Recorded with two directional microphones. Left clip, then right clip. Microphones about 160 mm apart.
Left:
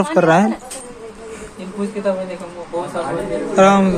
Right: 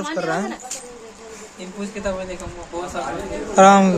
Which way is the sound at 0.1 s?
20° left (ahead or behind).